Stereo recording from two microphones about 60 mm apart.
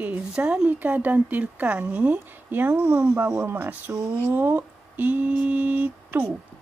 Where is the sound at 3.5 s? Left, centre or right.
Right.